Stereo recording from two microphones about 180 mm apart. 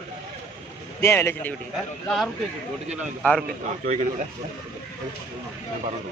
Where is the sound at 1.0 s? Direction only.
15° left (ahead or behind).